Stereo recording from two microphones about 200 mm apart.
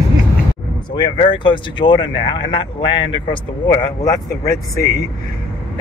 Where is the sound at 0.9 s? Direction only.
25° left (ahead or behind).